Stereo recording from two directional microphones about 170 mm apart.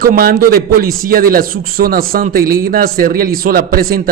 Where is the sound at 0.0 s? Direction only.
60° right (ahead or behind).